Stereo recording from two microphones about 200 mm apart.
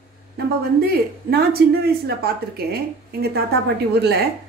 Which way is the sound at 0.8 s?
50° right (ahead or behind).